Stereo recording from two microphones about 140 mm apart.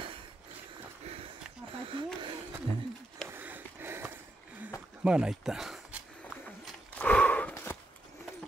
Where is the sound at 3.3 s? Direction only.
15° right (ahead or behind).